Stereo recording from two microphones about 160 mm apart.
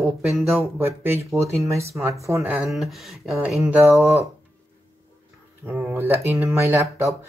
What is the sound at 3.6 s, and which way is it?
Speech, 10° right (ahead or behind).